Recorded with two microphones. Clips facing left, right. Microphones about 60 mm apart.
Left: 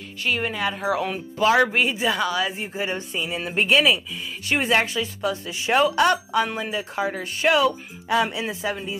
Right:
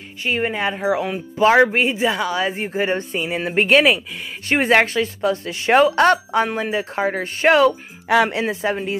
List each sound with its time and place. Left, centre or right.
0.2 s a man's voice: right
0.8 s a man's voice: centre
1.4 s a man's voice: right
2.5 s speech: right
8.1 s speech: right